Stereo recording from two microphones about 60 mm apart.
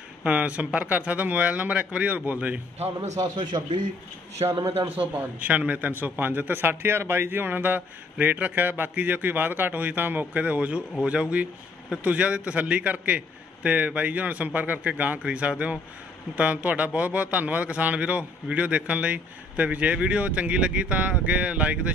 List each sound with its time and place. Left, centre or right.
0.2 s a man's voice: right
4.5 s a man's voice: right
4.9 s a man's voice: right
10.4 s a man's voice: right